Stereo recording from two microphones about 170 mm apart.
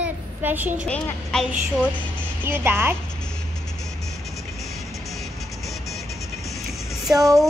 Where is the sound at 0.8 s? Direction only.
5° left (ahead or behind).